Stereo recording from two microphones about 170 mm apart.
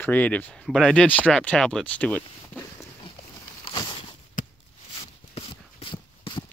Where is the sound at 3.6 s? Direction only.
30° left (ahead or behind).